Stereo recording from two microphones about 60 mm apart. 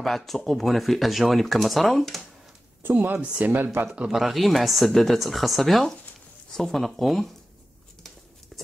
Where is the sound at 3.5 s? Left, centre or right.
Right.